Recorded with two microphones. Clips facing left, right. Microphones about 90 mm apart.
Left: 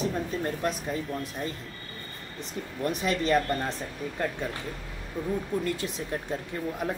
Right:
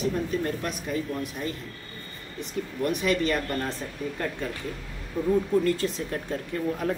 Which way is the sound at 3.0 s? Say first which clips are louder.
Left 3 dB; 25° left (ahead or behind).